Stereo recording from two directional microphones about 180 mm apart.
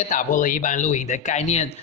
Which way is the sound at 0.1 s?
45° left (ahead or behind).